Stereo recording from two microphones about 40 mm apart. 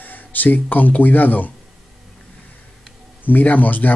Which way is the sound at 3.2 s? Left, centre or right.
Left.